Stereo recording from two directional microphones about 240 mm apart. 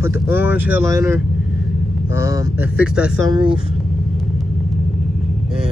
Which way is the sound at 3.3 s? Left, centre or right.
Centre.